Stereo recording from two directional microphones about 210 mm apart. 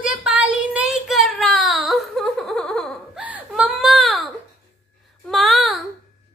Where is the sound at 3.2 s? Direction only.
5° right (ahead or behind).